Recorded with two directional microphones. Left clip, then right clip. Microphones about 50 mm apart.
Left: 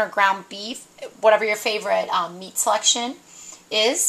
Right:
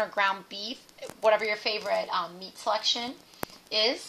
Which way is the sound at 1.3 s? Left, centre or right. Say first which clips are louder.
Left 7 dB; centre.